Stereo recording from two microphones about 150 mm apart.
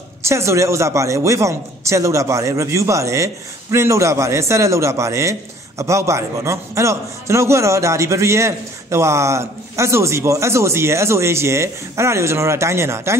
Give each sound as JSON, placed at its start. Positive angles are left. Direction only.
{"t": 0.2, "sound": "a man's voice", "side_deg": -20}